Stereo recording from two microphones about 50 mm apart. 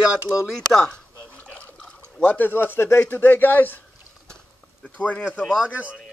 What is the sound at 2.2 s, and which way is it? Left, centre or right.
Speech, left.